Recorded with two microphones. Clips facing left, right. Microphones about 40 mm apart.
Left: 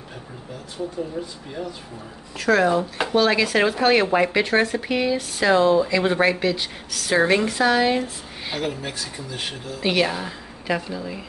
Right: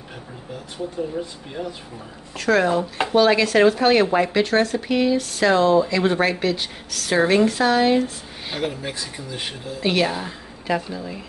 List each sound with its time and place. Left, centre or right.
1.6 s speech: centre